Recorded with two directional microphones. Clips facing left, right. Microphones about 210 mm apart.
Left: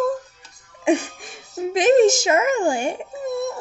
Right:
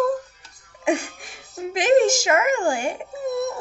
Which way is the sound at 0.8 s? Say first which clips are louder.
Left 3 dB; 20° left (ahead or behind).